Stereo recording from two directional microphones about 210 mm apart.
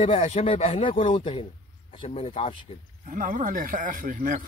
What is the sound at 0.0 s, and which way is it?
Speech, 30° left (ahead or behind).